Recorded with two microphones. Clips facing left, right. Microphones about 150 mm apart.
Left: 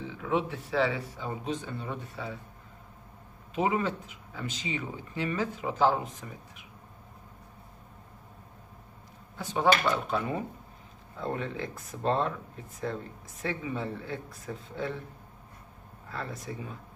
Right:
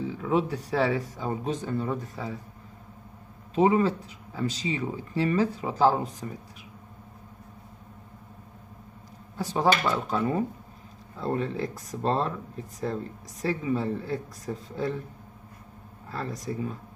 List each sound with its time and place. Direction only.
0.0 s speech: 40° right (ahead or behind)
3.5 s speech: 35° right (ahead or behind)
9.4 s speech: 35° right (ahead or behind)
16.1 s speech: 40° right (ahead or behind)